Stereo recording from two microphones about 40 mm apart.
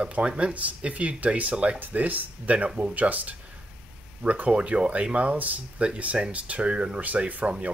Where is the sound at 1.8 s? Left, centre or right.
Right.